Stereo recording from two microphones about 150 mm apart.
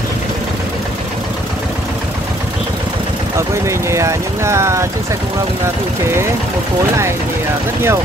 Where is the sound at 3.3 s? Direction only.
20° right (ahead or behind).